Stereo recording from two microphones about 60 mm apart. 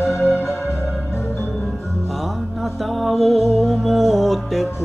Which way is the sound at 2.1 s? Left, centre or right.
Centre.